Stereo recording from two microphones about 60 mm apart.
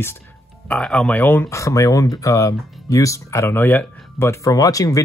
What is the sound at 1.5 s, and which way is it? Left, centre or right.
Speech, left.